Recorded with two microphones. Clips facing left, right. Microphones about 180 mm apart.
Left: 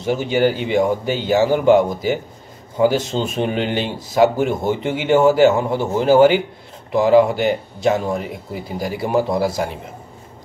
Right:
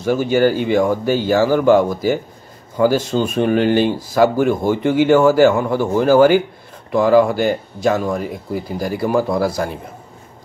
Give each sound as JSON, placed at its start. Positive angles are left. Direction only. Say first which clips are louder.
{"t": 0.0, "sound": "speech", "louder": "right 2 dB", "side_deg": 20}